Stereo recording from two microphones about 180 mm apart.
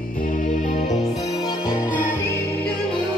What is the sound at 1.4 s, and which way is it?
Music, 10° right (ahead or behind).